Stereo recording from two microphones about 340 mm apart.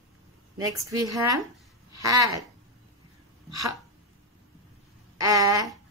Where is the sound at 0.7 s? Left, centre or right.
Centre.